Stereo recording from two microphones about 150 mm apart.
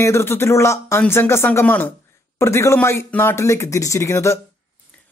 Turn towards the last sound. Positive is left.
turn(degrees=20)  # may be behind; listen again after turning